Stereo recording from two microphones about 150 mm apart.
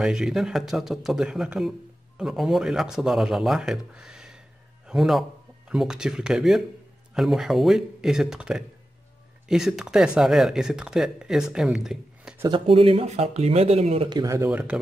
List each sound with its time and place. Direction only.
0.0 s a man's voice: 5° right (ahead or behind)
12.4 s speech: 35° right (ahead or behind)
14.0 s speech: 25° right (ahead or behind)